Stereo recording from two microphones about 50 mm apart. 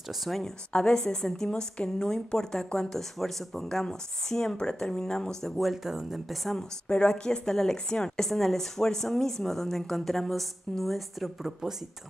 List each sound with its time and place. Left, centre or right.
0.1 s a woman's voice: centre
0.4 s speech: centre
5.6 s a woman's voice: centre
6.9 s speech: centre
8.3 s a woman's voice: centre